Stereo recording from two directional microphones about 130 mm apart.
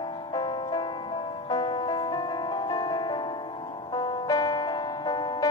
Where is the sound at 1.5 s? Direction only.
35° left (ahead or behind).